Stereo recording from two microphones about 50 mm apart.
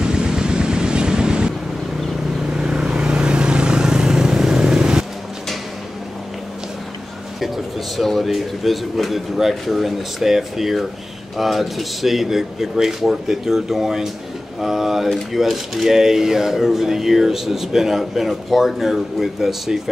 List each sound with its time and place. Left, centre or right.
0.0 s vehicle: centre
2.5 s vehicle: centre
7.3 s speech: centre